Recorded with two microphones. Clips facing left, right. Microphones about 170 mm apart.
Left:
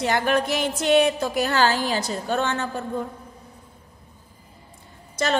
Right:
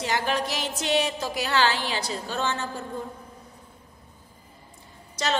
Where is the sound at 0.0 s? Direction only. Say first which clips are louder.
Left 5 dB; 55° left (ahead or behind).